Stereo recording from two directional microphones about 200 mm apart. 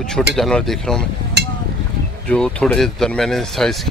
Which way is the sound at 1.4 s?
55° right (ahead or behind).